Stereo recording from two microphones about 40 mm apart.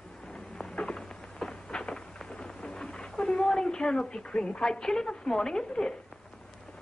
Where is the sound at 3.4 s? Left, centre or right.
Centre.